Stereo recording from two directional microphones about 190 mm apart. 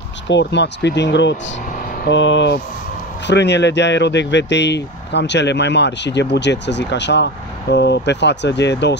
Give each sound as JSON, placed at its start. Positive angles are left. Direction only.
{"t": 0.3, "sound": "speech", "side_deg": 65}